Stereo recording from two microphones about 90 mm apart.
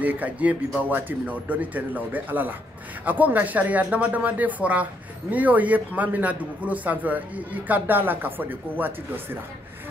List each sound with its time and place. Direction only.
0.0 s a man's voice: 15° right (ahead or behind)